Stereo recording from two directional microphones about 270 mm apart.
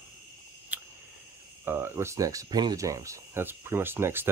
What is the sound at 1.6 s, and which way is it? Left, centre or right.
Speech, centre.